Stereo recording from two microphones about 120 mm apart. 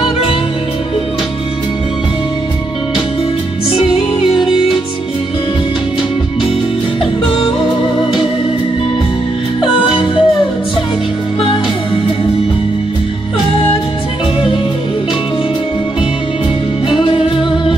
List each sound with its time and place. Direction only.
9.6 s music: 45° left (ahead or behind)
16.9 s music: 45° left (ahead or behind)